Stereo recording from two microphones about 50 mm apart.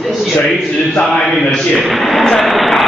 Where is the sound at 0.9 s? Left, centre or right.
Centre.